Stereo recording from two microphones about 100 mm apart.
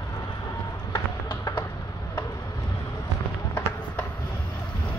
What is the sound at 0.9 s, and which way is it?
Music, 50° left (ahead or behind).